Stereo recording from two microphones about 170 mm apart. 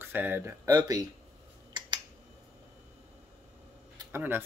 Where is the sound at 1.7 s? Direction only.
25° right (ahead or behind).